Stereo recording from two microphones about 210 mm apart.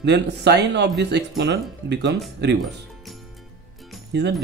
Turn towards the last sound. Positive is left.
turn(degrees=-55)  # may be behind; listen again after turning